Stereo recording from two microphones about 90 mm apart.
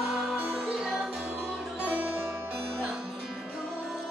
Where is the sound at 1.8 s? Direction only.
20° right (ahead or behind).